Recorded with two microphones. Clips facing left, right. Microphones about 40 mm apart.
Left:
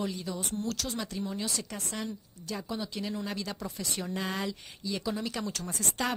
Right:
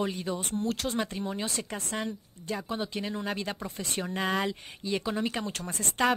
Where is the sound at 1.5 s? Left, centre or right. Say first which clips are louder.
Right 2 dB; right.